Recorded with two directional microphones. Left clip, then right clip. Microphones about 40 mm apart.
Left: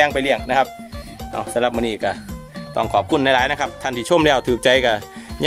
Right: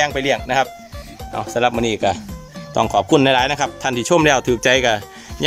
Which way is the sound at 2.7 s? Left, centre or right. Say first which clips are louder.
Right 2 dB; right.